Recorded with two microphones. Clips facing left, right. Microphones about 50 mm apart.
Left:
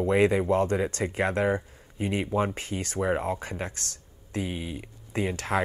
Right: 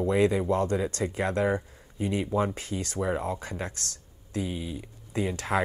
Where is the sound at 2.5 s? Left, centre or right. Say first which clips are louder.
Even; centre.